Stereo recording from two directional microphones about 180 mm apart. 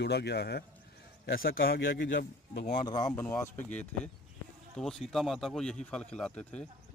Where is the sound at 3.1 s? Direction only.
10° left (ahead or behind).